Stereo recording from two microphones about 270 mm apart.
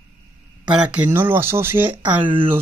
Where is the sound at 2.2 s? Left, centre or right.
Centre.